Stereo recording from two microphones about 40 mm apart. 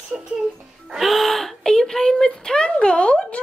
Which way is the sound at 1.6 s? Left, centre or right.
Centre.